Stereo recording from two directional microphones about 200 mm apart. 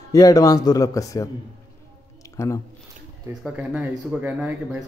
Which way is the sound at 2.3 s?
15° left (ahead or behind).